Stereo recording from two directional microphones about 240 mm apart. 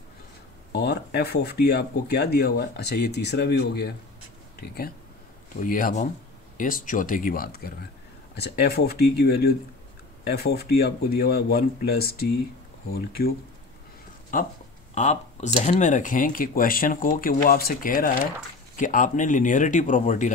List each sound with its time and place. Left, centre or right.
0.7 s speech: left